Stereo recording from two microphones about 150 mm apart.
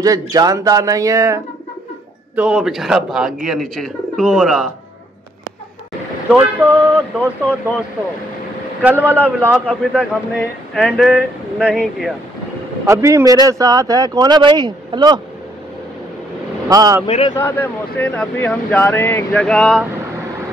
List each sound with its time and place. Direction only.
0.0 s speech: 25° right (ahead or behind)
2.3 s speech: 5° right (ahead or behind)
6.3 s speech: 10° right (ahead or behind)
8.8 s speech: 10° right (ahead or behind)
12.8 s speech: 20° right (ahead or behind)
16.6 s speech: 25° right (ahead or behind)
17.4 s speech: 10° left (ahead or behind)